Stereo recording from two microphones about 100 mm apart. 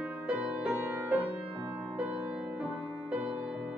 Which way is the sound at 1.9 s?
10° right (ahead or behind).